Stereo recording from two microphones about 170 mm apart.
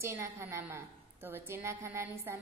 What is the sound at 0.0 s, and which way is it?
A woman's voice, 15° right (ahead or behind).